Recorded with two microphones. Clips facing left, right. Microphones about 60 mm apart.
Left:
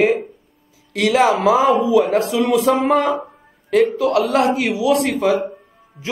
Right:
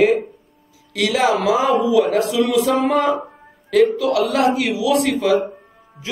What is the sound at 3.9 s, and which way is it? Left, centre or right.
A man's voice, left.